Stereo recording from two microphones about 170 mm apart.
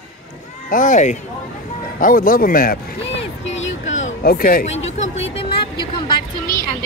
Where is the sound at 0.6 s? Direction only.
50° left (ahead or behind).